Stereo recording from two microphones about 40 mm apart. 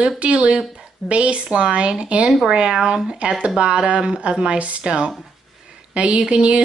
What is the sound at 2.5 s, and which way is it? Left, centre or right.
Speech, centre.